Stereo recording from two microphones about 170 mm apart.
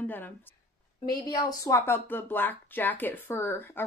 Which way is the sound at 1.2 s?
20° left (ahead or behind).